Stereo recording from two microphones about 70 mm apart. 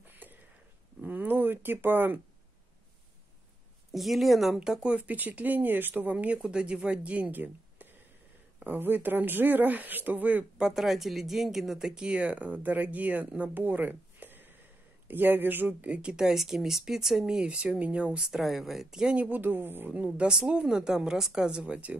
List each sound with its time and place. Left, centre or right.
0.0 s a sound: right
3.9 s a woman's voice: centre; by 6.1 s right
6.1 s speech: centre
10.6 s speech: centre
19.2 s speech: right